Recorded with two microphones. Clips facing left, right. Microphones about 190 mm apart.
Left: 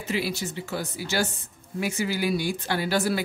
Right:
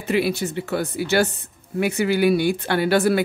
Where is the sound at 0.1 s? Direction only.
60° right (ahead or behind).